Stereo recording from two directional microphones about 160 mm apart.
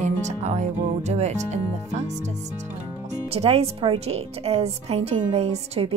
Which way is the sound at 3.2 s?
40° right (ahead or behind).